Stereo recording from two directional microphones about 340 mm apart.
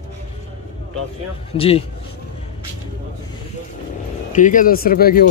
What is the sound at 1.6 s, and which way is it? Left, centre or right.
Speech, centre.